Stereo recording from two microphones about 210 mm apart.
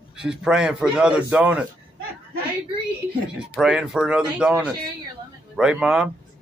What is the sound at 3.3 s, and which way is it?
Speech, 5° right (ahead or behind).